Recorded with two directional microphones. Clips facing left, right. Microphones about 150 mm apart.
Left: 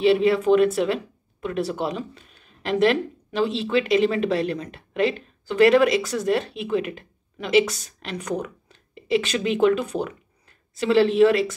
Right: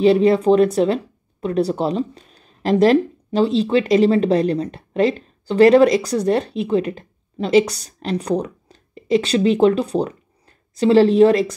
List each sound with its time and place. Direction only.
0.0 s a woman's voice: 40° right (ahead or behind)